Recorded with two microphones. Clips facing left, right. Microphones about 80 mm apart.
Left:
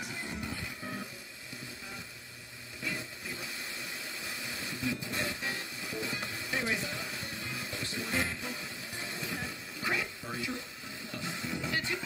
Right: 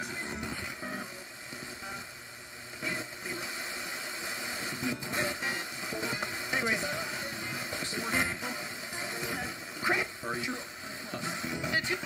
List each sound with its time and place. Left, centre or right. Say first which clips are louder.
0.0 s music: right 2 dB; right
2.8 s a sound: right 2 dB; right
11.1 s music: right 2 dB; right